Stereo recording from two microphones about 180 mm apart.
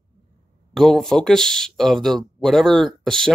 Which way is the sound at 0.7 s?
Centre (ahead or behind).